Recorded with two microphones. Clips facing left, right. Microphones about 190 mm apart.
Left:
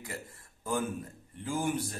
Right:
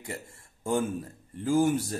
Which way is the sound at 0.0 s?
25° right (ahead or behind).